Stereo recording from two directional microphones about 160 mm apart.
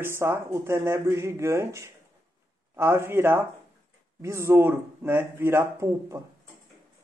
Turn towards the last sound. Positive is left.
turn(degrees=-15)  # may be behind; listen again after turning